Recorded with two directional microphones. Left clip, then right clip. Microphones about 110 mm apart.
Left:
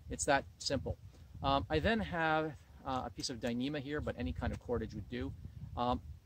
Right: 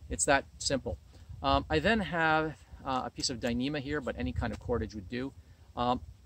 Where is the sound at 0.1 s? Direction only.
10° left (ahead or behind).